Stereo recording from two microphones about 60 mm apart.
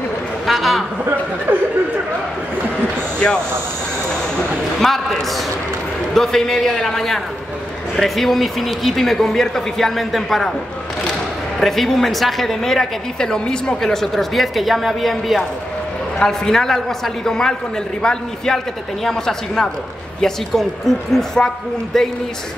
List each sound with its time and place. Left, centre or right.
0.5 s a sound: centre
1.5 s chatter: right
4.7 s a man's voice: centre
11.6 s a woman's voice: centre